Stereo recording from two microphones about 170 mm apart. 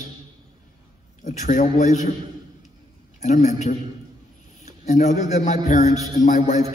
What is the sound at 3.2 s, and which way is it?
A man's voice, 40° left (ahead or behind).